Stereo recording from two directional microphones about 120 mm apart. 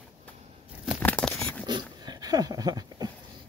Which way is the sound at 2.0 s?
35° right (ahead or behind).